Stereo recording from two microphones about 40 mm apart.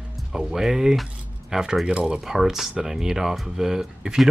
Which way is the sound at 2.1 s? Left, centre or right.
Centre.